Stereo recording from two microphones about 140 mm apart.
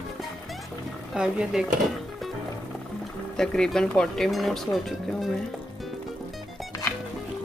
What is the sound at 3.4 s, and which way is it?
Speech, 5° left (ahead or behind).